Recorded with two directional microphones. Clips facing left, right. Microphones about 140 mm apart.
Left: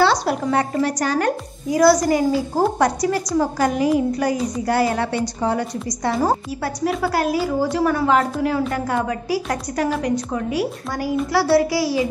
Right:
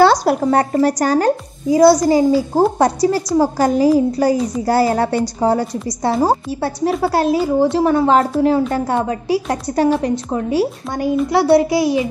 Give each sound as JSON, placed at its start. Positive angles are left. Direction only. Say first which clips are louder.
{"t": 0.0, "sound": "a woman's voice", "louder": "right 6 dB", "side_deg": -40}